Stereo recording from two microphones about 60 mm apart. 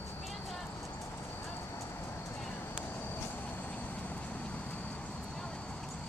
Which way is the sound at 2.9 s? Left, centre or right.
Left.